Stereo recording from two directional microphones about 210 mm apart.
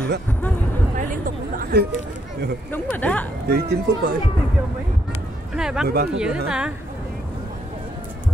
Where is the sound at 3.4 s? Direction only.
50° right (ahead or behind).